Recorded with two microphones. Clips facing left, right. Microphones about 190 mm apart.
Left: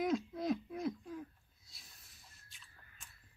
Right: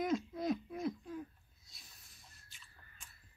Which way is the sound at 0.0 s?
Centre (ahead or behind).